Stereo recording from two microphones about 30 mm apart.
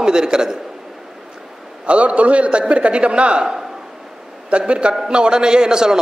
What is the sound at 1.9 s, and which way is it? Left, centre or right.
A man's voice, right.